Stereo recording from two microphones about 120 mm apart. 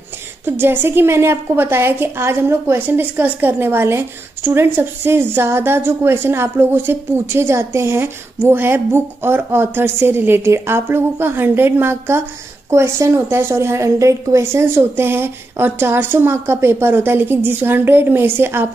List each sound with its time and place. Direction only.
0.5 s a woman's voice: 15° right (ahead or behind)